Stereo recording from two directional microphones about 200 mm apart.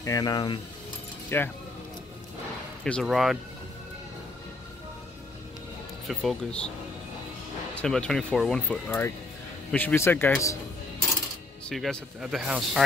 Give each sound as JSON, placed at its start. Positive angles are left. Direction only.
{"t": 0.0, "sound": "a man's voice", "side_deg": 20}
{"t": 2.8, "sound": "speech", "side_deg": 0}
{"t": 6.0, "sound": "speech", "side_deg": 5}
{"t": 7.7, "sound": "a man's voice", "side_deg": 5}
{"t": 11.7, "sound": "speech", "side_deg": 0}